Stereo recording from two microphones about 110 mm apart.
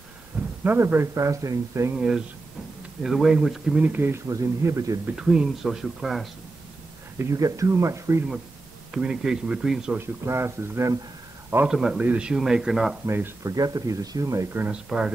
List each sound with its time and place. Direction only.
0.3 s a sound: 10° right (ahead or behind)
0.7 s speech: 20° right (ahead or behind)
2.0 s speech: 5° right (ahead or behind)
3.8 s speech: 20° right (ahead or behind)
4.3 s speech: 30° right (ahead or behind)
5.1 s speech: 5° right (ahead or behind)
7.3 s speech: 30° right (ahead or behind)
8.9 s speech: 5° right (ahead or behind)
9.9 s speech: 25° right (ahead or behind)
11.6 s a man's voice: 5° right (ahead or behind)
13.0 s speech: 25° right (ahead or behind)
14.9 s a man's voice: 5° right (ahead or behind)